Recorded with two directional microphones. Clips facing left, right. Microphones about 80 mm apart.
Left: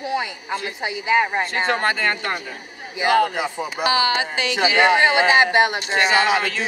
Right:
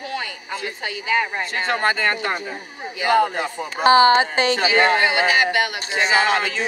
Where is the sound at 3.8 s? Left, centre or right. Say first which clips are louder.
Right 7 dB; right.